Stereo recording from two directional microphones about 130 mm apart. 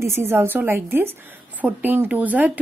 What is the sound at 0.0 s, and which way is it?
A woman's voice, 20° right (ahead or behind).